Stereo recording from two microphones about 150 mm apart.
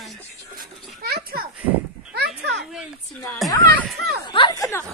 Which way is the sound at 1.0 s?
85° right.